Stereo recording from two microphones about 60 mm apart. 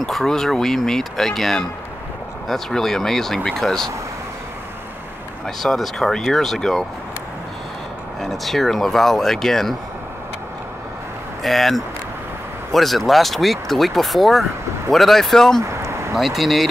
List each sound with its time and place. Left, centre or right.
0.0 s speech: centre
5.6 s speech: centre
8.2 s speech: centre
11.4 s speech: centre
15.6 s a sound: right
16.2 s speech: centre